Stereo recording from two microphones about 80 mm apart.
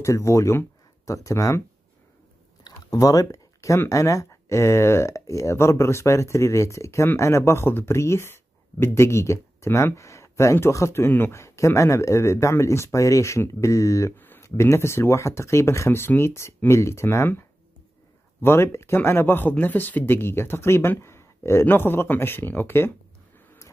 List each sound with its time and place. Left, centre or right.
0.0 s speech: left
2.6 s a sound: left
3.9 s speech: left
11.3 s speech: left
14.1 s a sound: left
14.4 s speech: left